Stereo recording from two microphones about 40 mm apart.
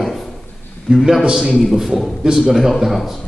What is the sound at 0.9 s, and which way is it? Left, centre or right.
Speech, right.